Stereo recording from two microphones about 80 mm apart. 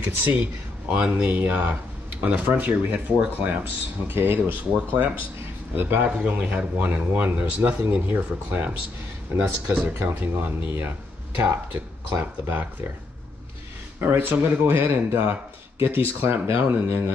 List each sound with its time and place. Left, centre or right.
0.0 s speech: right
9.9 s speech: right
14.0 s speech: right